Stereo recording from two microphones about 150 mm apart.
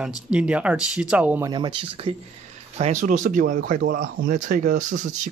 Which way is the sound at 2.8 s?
55° right (ahead or behind).